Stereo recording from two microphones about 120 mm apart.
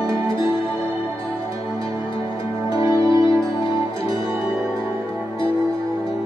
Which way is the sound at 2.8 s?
30° right (ahead or behind).